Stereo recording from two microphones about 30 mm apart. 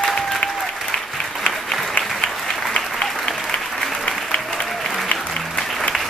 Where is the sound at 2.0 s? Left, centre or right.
Left.